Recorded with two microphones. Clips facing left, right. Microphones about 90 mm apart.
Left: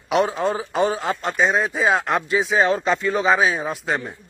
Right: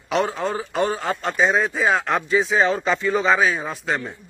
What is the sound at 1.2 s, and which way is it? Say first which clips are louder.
Speech: right 1 dB; centre (ahead or behind).